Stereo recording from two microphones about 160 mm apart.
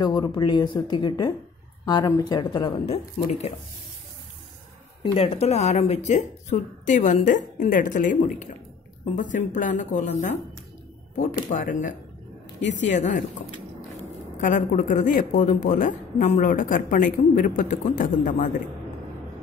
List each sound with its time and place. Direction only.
0.0 s speech: 25° left (ahead or behind)
3.3 s a woman's voice: 45° left (ahead or behind)
5.0 s a woman's voice: 35° left (ahead or behind); by 10.3 s 50° left (ahead or behind)
11.5 s a woman's voice: 55° left (ahead or behind)
14.4 s speech: 55° left (ahead or behind)